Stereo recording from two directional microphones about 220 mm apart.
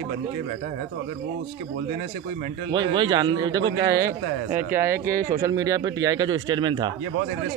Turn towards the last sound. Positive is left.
turn(degrees=-20)  # may be behind; listen again after turning